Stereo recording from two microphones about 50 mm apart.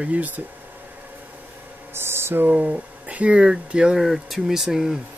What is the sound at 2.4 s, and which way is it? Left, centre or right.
Speech, right.